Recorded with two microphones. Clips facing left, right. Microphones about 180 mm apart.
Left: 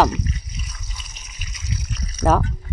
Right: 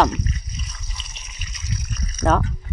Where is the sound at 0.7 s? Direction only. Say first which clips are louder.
Even; 5° left (ahead or behind).